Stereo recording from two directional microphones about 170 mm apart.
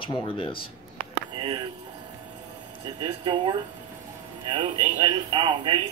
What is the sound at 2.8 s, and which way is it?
Speech, 25° right (ahead or behind).